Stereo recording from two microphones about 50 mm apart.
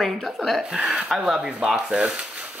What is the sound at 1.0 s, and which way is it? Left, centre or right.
Speech, centre.